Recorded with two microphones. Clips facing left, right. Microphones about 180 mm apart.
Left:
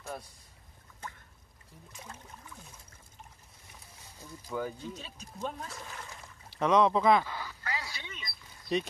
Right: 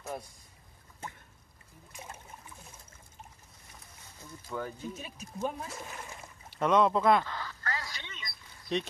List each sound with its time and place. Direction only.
4.2 s speech: 10° left (ahead or behind)
4.8 s speech: 10° right (ahead or behind)
5.7 s speech: 20° right (ahead or behind)
6.6 s speech: centre (ahead or behind)
7.2 s quack: 10° left (ahead or behind)
8.7 s speech: centre (ahead or behind)